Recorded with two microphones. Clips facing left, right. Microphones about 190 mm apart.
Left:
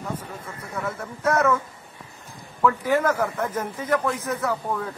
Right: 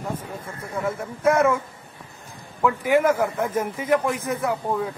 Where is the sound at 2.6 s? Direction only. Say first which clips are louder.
Right 2 dB; 10° right (ahead or behind).